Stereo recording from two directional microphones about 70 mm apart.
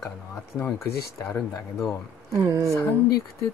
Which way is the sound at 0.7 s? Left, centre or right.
Left.